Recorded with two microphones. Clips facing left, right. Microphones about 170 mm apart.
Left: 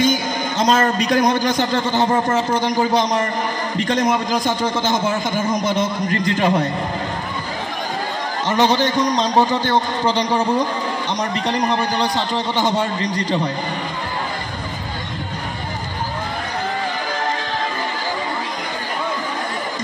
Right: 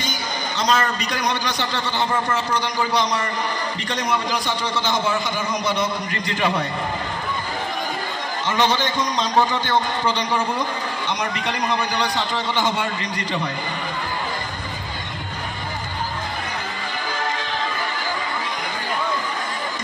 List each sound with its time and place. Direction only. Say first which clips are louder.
0.0 s a man's voice: left 9 dB; 50° left (ahead or behind)
8.5 s a man's voice: left 4 dB; 35° left (ahead or behind)